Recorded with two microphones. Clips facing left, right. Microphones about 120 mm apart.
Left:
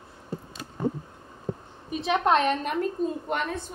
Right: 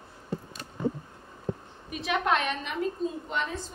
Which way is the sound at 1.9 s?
35° left (ahead or behind).